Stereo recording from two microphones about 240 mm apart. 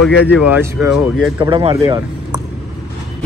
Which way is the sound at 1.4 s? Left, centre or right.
Centre.